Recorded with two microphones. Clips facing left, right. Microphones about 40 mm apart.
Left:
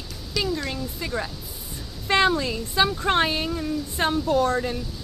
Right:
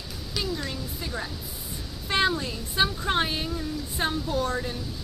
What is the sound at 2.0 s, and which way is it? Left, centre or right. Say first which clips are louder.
Speech: left 5 dB; left.